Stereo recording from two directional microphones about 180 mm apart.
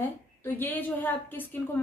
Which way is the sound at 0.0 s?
10° left (ahead or behind).